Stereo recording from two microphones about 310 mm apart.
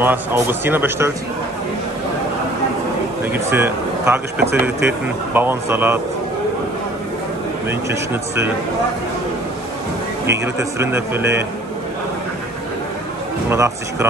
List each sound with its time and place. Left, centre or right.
0.0 s speech: centre
3.3 s speech: centre
7.9 s speech: centre
10.2 s speech: centre
13.5 s speech: centre